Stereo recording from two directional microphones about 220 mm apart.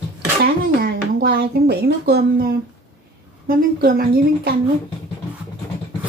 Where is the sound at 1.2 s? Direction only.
50° right (ahead or behind).